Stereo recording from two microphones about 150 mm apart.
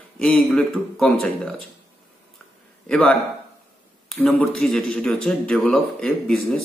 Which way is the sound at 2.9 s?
5° left (ahead or behind).